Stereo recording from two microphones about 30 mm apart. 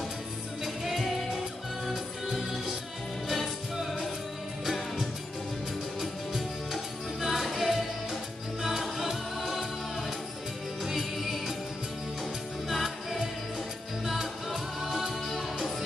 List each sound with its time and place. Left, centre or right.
0.8 s music: centre
3.3 s music: centre
5.9 s music: centre
8.9 s singing: centre
10.8 s music: centre
12.6 s music: centre